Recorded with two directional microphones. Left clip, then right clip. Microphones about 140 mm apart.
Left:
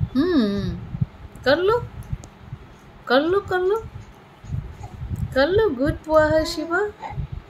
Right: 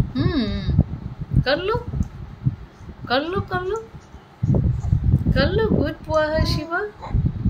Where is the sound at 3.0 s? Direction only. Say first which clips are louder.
Left 4 dB; 60° left (ahead or behind).